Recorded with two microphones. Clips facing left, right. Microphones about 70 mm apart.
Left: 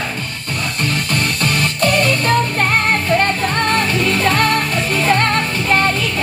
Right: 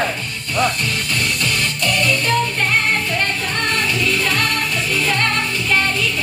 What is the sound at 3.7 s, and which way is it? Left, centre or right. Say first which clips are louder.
Music: left 3 dB; left.